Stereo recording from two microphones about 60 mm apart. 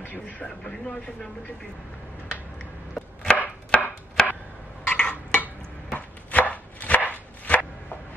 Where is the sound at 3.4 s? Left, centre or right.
Centre.